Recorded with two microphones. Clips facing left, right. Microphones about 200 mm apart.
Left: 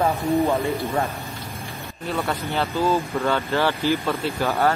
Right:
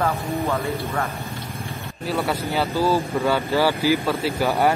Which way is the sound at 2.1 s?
5° right (ahead or behind).